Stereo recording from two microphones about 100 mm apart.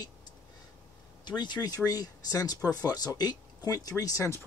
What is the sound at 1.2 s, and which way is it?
Speech, 45° left (ahead or behind).